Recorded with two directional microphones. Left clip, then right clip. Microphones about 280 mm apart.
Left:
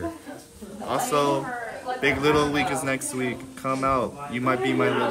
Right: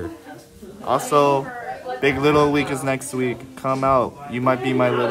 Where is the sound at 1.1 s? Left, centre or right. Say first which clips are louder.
Right 6 dB; centre.